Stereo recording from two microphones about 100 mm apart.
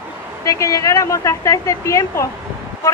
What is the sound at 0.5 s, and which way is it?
Speech, 35° left (ahead or behind).